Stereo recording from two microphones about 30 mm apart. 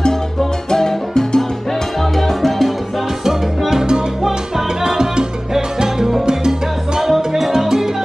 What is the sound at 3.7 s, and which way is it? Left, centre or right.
Music, right.